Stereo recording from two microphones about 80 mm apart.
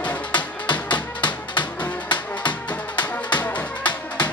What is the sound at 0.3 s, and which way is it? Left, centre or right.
Music, left.